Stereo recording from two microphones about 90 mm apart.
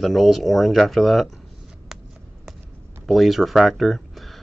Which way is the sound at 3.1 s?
Centre (ahead or behind).